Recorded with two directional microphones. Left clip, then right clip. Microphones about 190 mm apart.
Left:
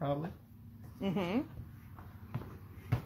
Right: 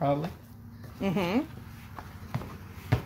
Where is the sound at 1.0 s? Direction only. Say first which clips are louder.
Right 7 dB; 5° left (ahead or behind).